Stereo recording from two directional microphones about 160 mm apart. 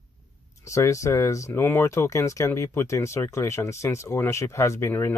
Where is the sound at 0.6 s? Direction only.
20° left (ahead or behind).